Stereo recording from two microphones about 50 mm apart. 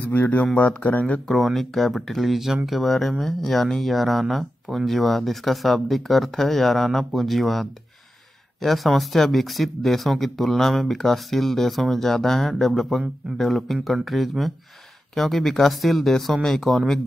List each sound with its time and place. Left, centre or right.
0.0 s speech: left
1.3 s speech: centre